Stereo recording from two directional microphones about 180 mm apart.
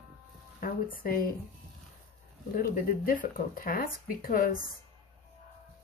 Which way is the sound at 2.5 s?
50° left (ahead or behind).